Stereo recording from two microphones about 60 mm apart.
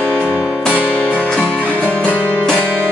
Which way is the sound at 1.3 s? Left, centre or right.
Centre.